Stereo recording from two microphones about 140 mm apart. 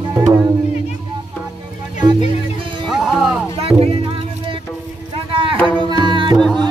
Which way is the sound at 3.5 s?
45° right (ahead or behind).